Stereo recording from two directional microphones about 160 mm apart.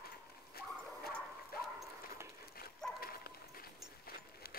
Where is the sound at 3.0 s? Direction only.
70° left (ahead or behind).